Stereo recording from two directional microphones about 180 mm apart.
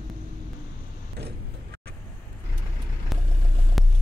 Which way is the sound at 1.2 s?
65° right (ahead or behind).